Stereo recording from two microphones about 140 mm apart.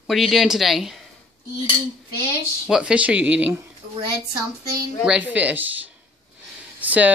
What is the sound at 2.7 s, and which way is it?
Speech, 5° right (ahead or behind).